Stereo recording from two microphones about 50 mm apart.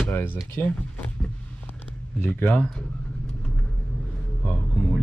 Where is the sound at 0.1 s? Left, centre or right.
Left.